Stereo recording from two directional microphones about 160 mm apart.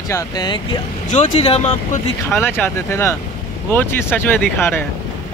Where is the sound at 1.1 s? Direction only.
35° left (ahead or behind).